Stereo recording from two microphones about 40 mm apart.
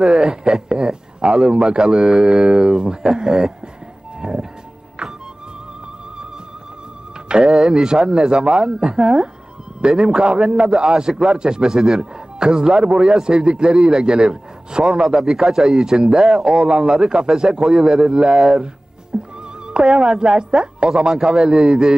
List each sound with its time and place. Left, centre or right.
0.1 s a sound: centre
1.7 s a man's voice: centre
4.2 s music: centre
7.4 s a man's voice: centre
15.1 s a man's voice: centre